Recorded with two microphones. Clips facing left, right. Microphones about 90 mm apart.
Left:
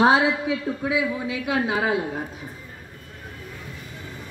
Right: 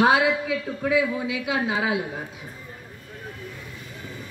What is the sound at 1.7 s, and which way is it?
Speech, 45° left (ahead or behind).